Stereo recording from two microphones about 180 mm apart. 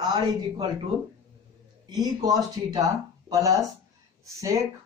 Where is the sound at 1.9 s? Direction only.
20° right (ahead or behind).